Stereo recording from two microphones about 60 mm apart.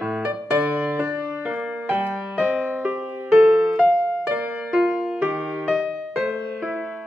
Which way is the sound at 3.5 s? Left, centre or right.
Centre.